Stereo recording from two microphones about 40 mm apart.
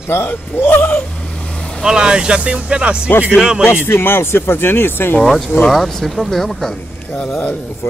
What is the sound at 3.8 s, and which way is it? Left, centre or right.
Speech, left.